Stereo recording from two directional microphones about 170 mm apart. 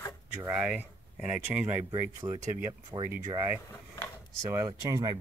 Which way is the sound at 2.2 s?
20° right (ahead or behind).